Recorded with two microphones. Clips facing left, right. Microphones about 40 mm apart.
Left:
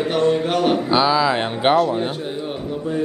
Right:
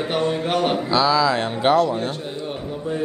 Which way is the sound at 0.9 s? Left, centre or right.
Left.